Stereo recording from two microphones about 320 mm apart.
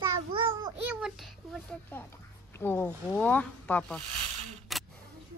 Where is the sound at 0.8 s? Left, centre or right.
Centre.